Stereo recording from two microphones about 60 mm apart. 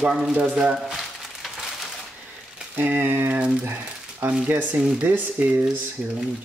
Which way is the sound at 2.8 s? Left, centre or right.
Right.